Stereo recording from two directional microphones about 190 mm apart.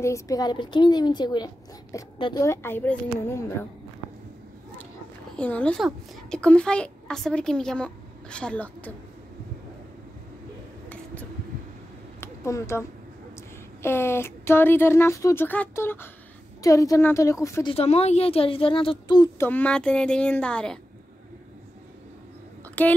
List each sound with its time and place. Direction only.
0.0 s a woman's voice: 15° left (ahead or behind)
5.4 s a child's voice: 5° left (ahead or behind)
12.2 s a sound: 15° left (ahead or behind)
13.8 s speech: 15° left (ahead or behind)
17.7 s a woman's voice: 35° left (ahead or behind)
19.4 s a child's voice: 10° left (ahead or behind)
22.8 s speech: 10° left (ahead or behind)